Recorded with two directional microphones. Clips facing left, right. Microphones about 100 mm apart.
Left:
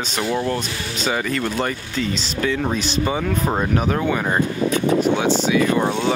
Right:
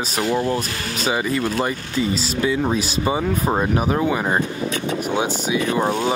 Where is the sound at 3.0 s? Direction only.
15° right (ahead or behind).